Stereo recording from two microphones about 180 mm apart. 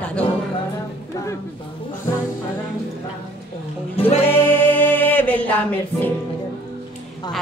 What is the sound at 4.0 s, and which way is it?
Music, 30° left (ahead or behind).